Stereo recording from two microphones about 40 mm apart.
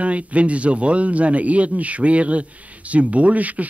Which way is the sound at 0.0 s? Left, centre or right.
Right.